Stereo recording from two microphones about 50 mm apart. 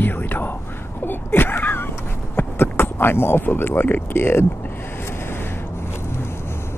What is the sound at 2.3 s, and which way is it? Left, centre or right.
Speech, left.